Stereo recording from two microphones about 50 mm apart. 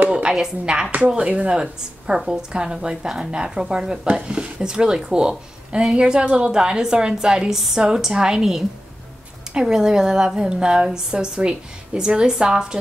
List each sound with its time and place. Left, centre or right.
0.1 s a woman's voice: centre
0.9 s a woman's voice: right